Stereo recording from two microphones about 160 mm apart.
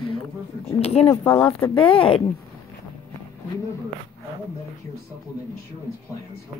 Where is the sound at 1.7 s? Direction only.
35° left (ahead or behind).